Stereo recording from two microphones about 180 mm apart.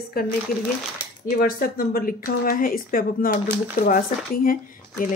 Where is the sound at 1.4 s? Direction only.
55° left (ahead or behind).